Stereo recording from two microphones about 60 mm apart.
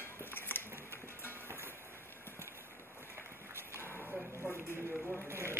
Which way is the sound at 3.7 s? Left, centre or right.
Left.